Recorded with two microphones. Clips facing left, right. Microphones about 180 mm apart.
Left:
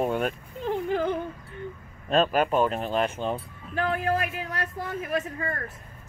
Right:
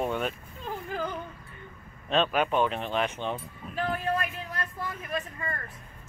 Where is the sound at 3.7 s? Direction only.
75° left (ahead or behind).